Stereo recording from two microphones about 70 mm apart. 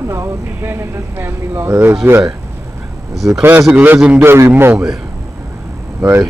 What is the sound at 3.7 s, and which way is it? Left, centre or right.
A man's voice, right.